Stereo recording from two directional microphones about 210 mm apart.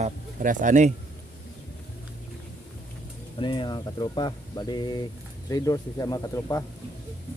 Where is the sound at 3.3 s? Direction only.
25° left (ahead or behind).